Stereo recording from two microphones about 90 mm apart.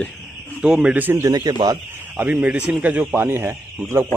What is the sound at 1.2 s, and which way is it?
Speech, 45° right (ahead or behind).